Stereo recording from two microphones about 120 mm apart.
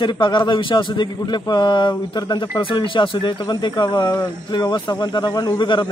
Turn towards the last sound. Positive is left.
turn(degrees=40)  # may be behind; listen again after turning